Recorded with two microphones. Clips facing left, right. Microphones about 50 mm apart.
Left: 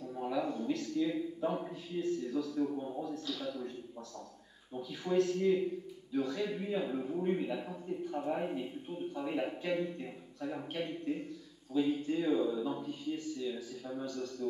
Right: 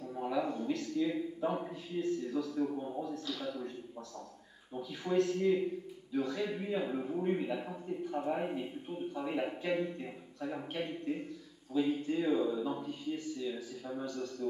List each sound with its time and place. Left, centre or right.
0.1 s a sound: centre
2.0 s a man's voice: centre
4.7 s a man's voice: centre